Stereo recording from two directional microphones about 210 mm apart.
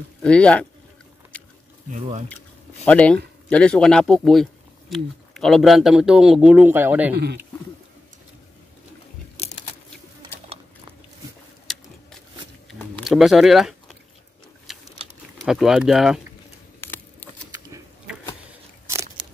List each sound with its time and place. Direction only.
0.2 s speech: 5° left (ahead or behind)
1.3 s biting: 5° left (ahead or behind)
1.9 s speech: 35° right (ahead or behind)
2.8 s speech: 5° left (ahead or behind)
11.6 s a sound: centre (ahead or behind)
13.0 s speech: centre (ahead or behind)
14.7 s a sound: centre (ahead or behind)
15.4 s speech: centre (ahead or behind)
16.8 s a sound: 10° left (ahead or behind)